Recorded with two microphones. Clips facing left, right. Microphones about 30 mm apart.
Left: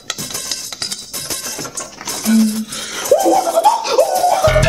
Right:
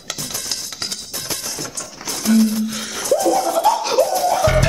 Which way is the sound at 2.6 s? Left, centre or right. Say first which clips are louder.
Right 1 dB; centre.